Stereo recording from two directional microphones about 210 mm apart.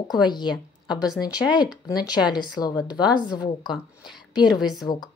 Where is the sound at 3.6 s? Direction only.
Centre (ahead or behind).